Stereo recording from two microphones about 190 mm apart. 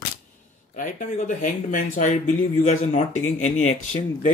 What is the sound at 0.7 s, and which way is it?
Speech, 40° left (ahead or behind).